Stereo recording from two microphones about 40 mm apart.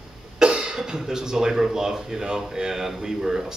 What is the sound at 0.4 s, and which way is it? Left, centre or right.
Speech, right.